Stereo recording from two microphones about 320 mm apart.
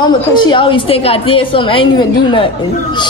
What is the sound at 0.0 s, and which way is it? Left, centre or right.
A man's voice, centre.